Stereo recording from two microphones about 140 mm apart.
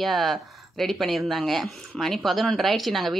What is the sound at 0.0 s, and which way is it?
Speech, centre (ahead or behind).